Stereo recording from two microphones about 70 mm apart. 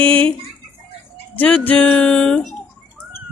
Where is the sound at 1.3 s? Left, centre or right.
Left.